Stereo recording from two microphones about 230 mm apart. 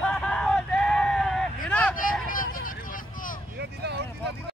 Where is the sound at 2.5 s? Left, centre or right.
Left.